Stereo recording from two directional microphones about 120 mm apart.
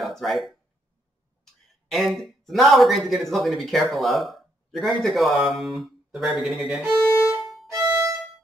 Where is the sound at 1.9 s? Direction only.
Centre (ahead or behind).